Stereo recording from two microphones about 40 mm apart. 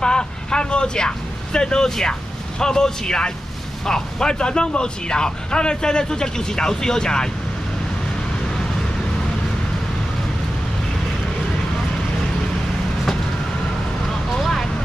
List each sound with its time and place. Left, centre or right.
0.0 s vehicle: left
2.6 s speech: centre
14.4 s vehicle: centre